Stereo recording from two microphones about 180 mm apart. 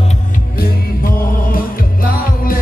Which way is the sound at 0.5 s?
55° left (ahead or behind).